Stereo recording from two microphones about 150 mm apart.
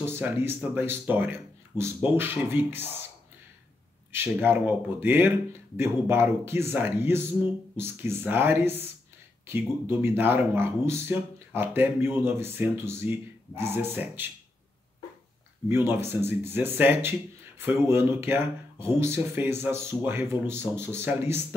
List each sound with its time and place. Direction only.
0.0 s speech: 15° right (ahead or behind)
4.1 s speech: 15° right (ahead or behind)
15.7 s speech: 15° right (ahead or behind)